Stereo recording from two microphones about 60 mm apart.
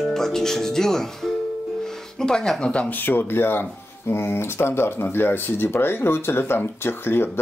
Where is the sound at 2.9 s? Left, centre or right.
Left.